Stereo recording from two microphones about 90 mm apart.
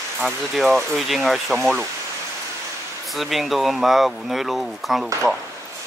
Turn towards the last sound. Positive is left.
turn(degrees=0)  # may be behind; listen again after turning